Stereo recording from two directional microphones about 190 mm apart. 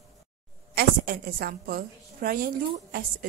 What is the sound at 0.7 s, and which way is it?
A woman's voice, 50° right (ahead or behind).